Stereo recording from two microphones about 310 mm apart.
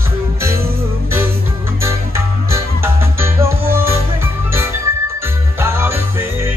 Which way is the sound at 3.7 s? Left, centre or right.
Centre.